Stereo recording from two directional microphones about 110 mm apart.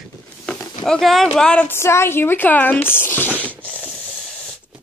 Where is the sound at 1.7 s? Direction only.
25° left (ahead or behind).